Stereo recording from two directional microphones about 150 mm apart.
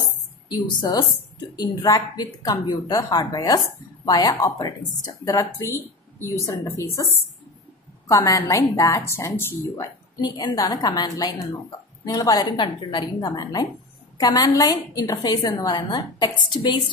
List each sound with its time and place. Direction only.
0.5 s a woman's voice: 30° left (ahead or behind)
8.1 s a woman's voice: 25° left (ahead or behind)
10.2 s a woman's voice: 30° left (ahead or behind)